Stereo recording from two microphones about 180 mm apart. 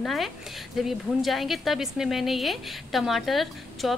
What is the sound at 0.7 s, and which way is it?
A woman's voice, centre (ahead or behind).